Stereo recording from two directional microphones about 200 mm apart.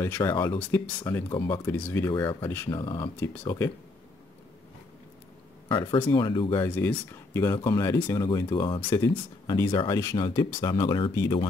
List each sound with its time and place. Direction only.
0.0 s speech: 15° left (ahead or behind)
5.7 s speech: 25° left (ahead or behind)
6.7 s speech: 10° left (ahead or behind)